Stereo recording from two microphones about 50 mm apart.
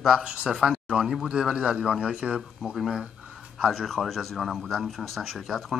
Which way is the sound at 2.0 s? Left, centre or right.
Right.